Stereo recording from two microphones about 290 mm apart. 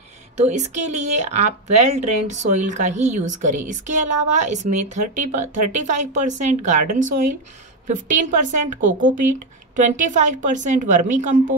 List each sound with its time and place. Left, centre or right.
0.4 s speech: right
9.1 s speech: right
9.8 s speech: right